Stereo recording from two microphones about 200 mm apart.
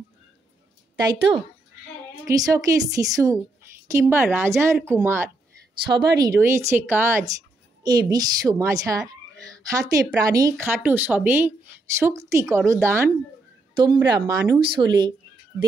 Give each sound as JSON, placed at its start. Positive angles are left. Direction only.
{"t": 0.9, "sound": "speech", "side_deg": -20}